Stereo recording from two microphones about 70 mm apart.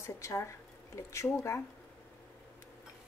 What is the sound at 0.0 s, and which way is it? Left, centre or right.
Speech, left.